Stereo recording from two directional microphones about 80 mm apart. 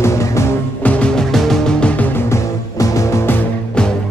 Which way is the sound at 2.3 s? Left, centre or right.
Left.